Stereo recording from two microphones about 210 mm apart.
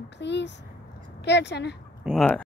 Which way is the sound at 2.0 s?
5° left (ahead or behind).